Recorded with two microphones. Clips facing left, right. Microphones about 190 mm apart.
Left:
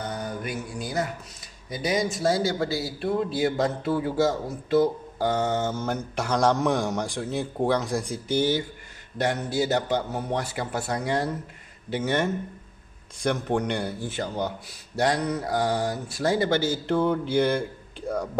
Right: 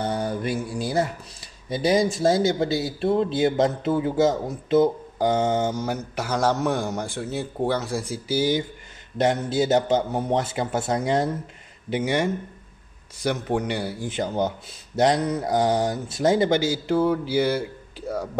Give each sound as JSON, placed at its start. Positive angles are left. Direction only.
{"t": 0.0, "sound": "mantra", "side_deg": -30}
{"t": 1.7, "sound": "a man's voice", "side_deg": -30}
{"t": 9.2, "sound": "a man's voice", "side_deg": -20}